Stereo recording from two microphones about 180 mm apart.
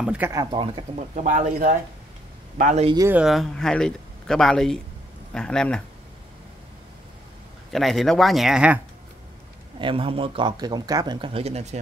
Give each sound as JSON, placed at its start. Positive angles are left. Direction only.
{"t": 0.0, "sound": "speech", "side_deg": -5}
{"t": 0.3, "sound": "speech", "side_deg": -25}
{"t": 0.9, "sound": "speech", "side_deg": -45}
{"t": 3.1, "sound": "speech", "side_deg": -5}
{"t": 7.7, "sound": "speech", "side_deg": 0}
{"t": 9.8, "sound": "speech", "side_deg": -30}